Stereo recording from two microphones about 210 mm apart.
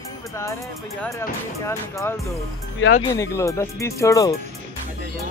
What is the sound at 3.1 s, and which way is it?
Speech, 15° left (ahead or behind).